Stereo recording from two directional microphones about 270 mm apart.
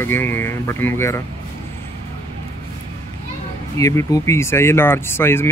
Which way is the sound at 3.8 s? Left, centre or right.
Centre.